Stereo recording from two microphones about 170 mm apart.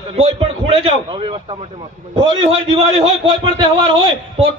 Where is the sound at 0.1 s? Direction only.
35° right (ahead or behind).